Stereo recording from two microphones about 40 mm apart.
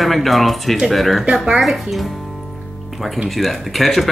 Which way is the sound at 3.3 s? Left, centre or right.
Centre.